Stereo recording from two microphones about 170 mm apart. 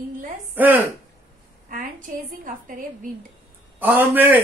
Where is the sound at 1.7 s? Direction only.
50° right (ahead or behind).